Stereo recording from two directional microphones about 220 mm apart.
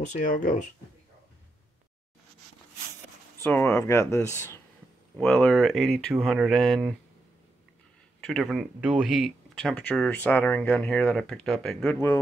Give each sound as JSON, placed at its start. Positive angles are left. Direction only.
{"t": 0.2, "sound": "speech", "side_deg": 35}
{"t": 3.3, "sound": "speech", "side_deg": 10}
{"t": 8.2, "sound": "speech", "side_deg": 0}